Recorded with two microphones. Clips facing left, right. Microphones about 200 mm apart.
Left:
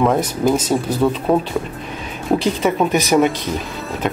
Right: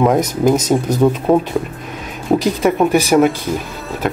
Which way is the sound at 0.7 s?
15° right (ahead or behind).